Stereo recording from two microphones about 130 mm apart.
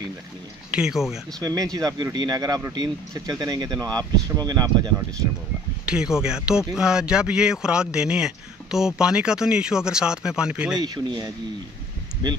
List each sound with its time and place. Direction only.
0.7 s speech: 5° right (ahead or behind)
1.4 s speech: 30° right (ahead or behind)
5.9 s speech: 5° right (ahead or behind)
10.8 s speech: 35° right (ahead or behind)